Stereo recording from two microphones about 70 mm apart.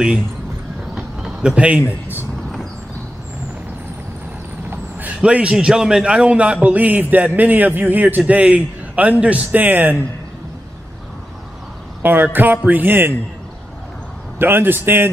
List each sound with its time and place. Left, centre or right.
0.9 s a sound: centre
5.2 s a man's voice: centre
12.0 s a man's voice: right
14.4 s speech: right